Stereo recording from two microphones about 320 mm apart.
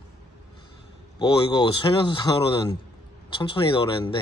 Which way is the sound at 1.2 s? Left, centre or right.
Centre.